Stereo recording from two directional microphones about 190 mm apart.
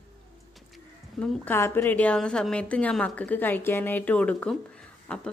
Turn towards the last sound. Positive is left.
turn(degrees=5)  # may be behind; listen again after turning